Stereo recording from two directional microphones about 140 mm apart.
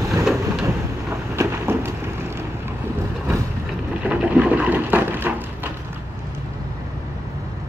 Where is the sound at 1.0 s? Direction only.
15° right (ahead or behind).